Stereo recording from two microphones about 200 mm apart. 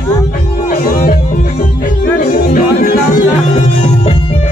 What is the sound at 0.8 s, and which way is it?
Music, 45° left (ahead or behind).